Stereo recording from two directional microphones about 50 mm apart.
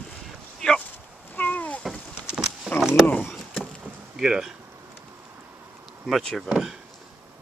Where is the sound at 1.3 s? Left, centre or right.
Left.